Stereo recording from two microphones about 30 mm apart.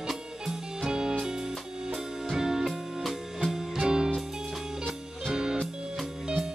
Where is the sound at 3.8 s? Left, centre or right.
Right.